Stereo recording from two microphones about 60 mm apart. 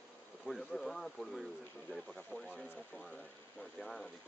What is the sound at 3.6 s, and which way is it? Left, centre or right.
Speech, centre.